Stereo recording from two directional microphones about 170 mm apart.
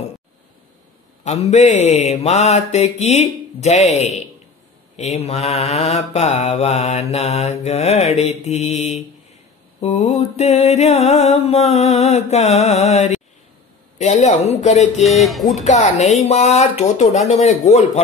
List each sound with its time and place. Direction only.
1.2 s mantra: 40° left (ahead or behind)
13.9 s speech: 40° left (ahead or behind)
15.0 s music: centre (ahead or behind)
15.6 s mantra: 40° left (ahead or behind)